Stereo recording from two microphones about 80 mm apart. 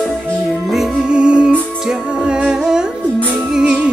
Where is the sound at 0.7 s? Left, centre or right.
Centre.